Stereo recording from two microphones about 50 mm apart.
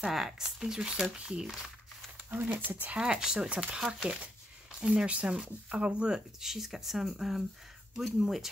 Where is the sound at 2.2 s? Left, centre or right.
Right.